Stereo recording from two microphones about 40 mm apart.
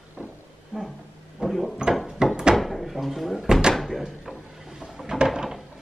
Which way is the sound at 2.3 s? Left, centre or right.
Right.